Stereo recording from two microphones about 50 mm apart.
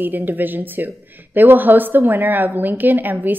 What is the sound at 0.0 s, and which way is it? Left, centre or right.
Speech, right.